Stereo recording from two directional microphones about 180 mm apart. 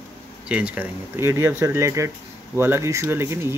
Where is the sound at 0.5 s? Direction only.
5° right (ahead or behind).